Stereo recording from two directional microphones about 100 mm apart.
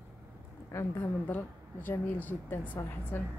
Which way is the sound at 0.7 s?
25° left (ahead or behind).